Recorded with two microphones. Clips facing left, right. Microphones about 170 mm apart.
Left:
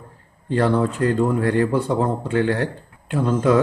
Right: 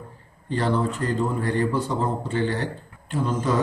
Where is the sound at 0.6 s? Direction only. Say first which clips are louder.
Left 5 dB; 55° left (ahead or behind).